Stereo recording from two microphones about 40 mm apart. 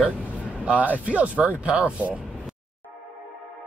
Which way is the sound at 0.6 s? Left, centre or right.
Right.